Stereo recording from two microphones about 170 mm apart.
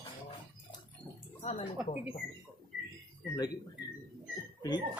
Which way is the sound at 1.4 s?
40° left (ahead or behind).